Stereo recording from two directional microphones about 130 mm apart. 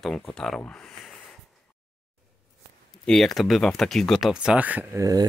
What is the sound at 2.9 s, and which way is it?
Speech, 5° left (ahead or behind).